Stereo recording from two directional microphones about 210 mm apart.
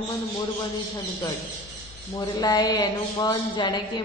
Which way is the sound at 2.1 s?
20° left (ahead or behind).